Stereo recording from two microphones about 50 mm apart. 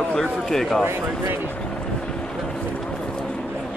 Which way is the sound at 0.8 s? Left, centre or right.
Right.